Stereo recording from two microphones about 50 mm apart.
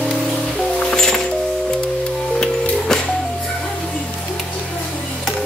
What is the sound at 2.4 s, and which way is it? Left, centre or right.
Music, centre.